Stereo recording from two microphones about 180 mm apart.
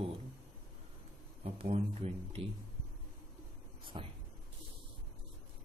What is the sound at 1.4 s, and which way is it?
Speech, 35° right (ahead or behind).